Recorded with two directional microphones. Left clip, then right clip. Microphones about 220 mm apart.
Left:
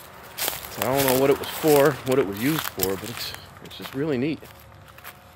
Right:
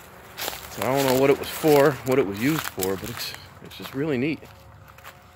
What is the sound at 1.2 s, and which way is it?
Speech, 15° right (ahead or behind).